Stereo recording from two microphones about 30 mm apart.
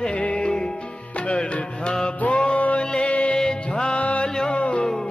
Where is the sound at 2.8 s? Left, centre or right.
Left.